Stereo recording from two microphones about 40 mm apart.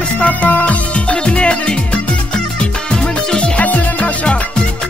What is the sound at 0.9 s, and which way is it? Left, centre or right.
Music, left.